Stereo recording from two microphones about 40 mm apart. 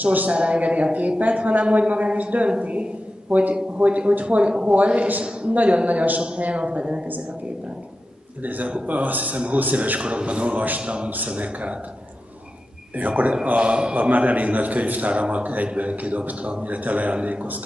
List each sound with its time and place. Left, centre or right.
0.0 s a man's voice: right
0.3 s a man's voice: right
8.4 s a man's voice: right
9.9 s a man's voice: right
12.9 s a man's voice: right
13.6 s a man's voice: right
13.9 s a man's voice: right
16.6 s a man's voice: right